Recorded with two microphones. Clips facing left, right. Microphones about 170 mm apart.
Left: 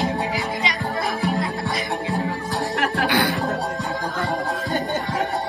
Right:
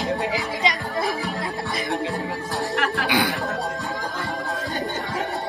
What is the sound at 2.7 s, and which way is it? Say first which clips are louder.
Music: left 3 dB; 40° left (ahead or behind).